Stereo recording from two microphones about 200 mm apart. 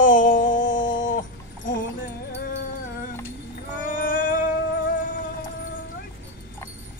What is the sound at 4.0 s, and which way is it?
Music, 45° left (ahead or behind).